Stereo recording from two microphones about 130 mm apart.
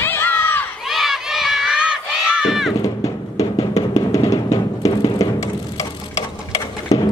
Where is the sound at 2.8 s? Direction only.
25° left (ahead or behind).